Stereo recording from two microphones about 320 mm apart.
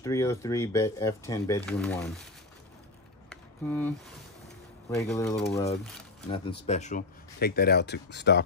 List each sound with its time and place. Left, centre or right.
0.0 s speech: centre
3.3 s a sound: centre
4.9 s speech: centre
6.6 s speech: left